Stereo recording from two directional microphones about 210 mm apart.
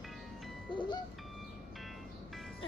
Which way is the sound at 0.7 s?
25° left (ahead or behind).